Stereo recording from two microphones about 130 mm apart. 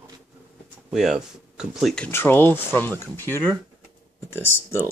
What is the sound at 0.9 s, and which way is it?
Speech, 5° right (ahead or behind).